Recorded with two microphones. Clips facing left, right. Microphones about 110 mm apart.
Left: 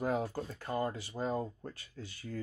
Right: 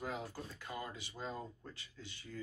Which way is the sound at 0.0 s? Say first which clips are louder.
Left 9 dB; 45° left (ahead or behind).